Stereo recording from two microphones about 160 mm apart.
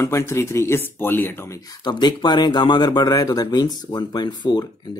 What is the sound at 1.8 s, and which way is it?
Speech, 25° left (ahead or behind).